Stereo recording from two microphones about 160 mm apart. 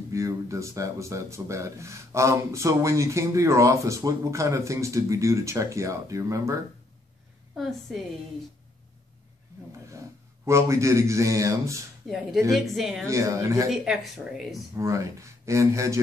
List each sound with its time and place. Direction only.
0.1 s speech: 20° right (ahead or behind)
9.8 s speech: 20° right (ahead or behind)
12.1 s speech: centre (ahead or behind)
13.0 s speech: 20° right (ahead or behind)
13.7 s speech: centre (ahead or behind)
14.8 s speech: 20° right (ahead or behind)